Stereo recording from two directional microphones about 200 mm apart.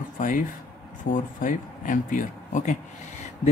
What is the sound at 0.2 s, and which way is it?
Speech, 40° left (ahead or behind).